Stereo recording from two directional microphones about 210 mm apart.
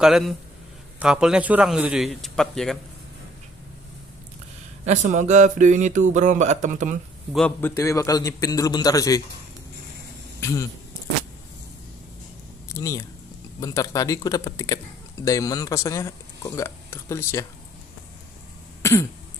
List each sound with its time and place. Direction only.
0.0 s a man's voice: centre (ahead or behind)
4.8 s speech: 35° right (ahead or behind)
7.3 s a man's voice: 5° left (ahead or behind)
10.4 s speech: 15° left (ahead or behind)
12.6 s speech: 15° left (ahead or behind)
18.8 s cough: 15° left (ahead or behind)